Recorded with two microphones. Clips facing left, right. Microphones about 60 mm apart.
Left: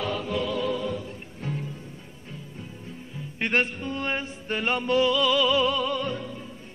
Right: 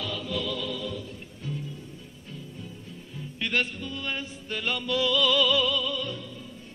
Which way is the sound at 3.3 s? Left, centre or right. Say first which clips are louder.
Left 3 dB; left.